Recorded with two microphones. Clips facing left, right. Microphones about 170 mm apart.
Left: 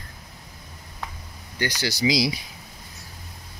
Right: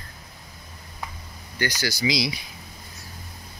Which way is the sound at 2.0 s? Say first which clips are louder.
Left 4 dB; 35° left (ahead or behind).